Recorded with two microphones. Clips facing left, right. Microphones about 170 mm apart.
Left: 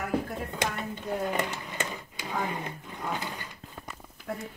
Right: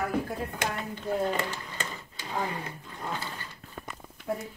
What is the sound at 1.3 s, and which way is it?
Speech, 20° left (ahead or behind).